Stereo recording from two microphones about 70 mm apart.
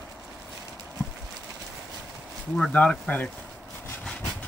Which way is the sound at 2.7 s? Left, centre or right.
Centre.